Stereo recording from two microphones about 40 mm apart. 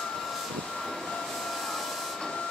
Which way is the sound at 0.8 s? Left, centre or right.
Centre.